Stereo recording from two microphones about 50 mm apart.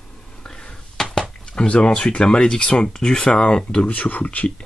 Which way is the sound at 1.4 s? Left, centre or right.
Centre.